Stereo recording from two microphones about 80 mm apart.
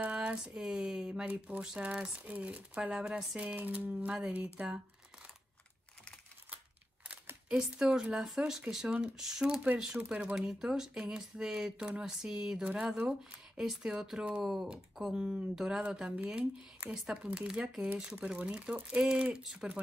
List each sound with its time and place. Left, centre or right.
0.0 s speech: centre
7.4 s speech: centre